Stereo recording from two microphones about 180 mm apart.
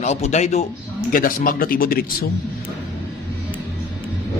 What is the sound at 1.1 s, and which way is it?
Speech, 50° left (ahead or behind).